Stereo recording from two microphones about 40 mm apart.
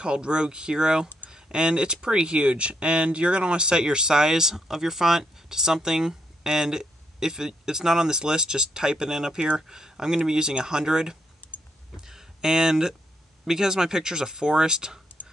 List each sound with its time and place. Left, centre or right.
0.0 s speech: right
11.4 s typing: left
12.1 s a sound: centre
13.5 s speech: centre